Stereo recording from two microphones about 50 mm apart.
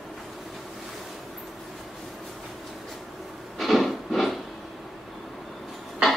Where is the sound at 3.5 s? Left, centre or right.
Centre.